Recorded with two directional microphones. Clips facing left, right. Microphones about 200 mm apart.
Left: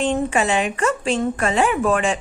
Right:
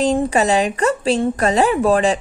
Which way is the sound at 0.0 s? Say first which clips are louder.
Right 3 dB; 40° right (ahead or behind).